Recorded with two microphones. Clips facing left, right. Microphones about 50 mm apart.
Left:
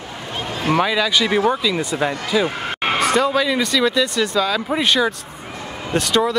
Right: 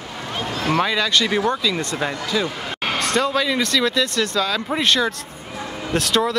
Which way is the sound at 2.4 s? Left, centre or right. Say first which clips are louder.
Left 4 dB; left.